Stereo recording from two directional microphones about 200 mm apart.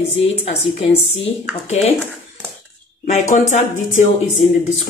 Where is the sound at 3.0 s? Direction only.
35° left (ahead or behind).